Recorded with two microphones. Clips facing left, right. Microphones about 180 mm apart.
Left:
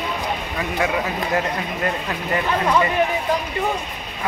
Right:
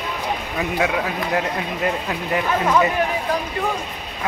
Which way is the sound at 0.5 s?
10° right (ahead or behind).